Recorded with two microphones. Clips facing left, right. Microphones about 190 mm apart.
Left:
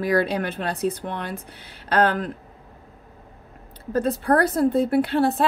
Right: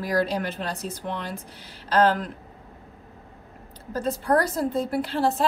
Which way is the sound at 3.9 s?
60° left (ahead or behind).